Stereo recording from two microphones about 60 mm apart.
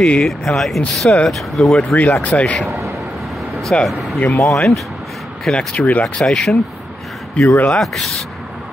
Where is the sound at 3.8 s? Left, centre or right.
Centre.